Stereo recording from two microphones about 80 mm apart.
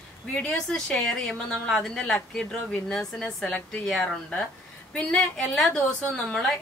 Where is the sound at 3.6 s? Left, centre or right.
Left.